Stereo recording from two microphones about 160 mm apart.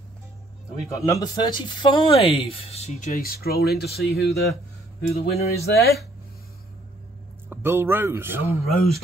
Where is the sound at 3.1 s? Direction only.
65° left (ahead or behind).